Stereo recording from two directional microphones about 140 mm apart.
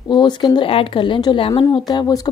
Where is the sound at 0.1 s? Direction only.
30° left (ahead or behind).